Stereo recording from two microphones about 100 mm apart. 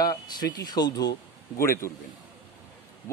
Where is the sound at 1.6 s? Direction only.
30° left (ahead or behind).